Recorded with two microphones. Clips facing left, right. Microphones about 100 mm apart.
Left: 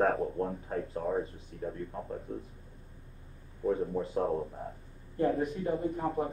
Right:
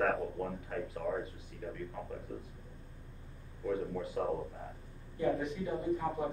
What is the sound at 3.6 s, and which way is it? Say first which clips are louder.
Speech: left 5 dB; 30° left (ahead or behind).